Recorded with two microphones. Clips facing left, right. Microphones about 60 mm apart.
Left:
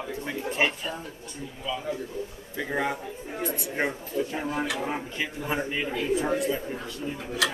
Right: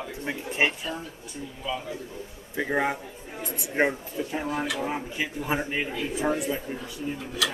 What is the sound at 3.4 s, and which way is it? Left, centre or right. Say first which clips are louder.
Speech: left 5 dB; left.